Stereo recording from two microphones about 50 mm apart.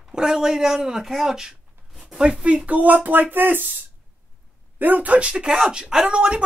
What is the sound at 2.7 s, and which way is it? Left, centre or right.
Speech, right.